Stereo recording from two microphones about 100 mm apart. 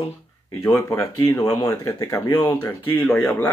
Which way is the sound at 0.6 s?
25° left (ahead or behind).